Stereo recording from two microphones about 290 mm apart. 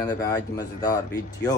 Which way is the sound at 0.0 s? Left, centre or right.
Centre.